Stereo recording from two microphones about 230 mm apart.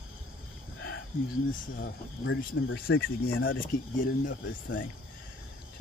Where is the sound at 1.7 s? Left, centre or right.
Left.